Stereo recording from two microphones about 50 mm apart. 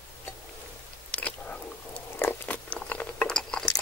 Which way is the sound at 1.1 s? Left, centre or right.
Left.